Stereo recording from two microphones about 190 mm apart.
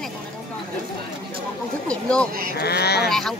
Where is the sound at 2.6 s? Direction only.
60° left (ahead or behind).